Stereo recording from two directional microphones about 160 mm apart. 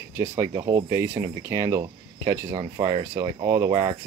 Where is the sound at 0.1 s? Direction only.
15° right (ahead or behind).